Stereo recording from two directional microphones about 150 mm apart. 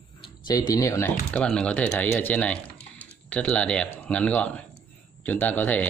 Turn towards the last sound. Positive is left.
turn(degrees=10)  # may be behind; listen again after turning